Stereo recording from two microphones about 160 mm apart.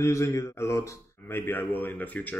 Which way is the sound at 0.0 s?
20° left (ahead or behind).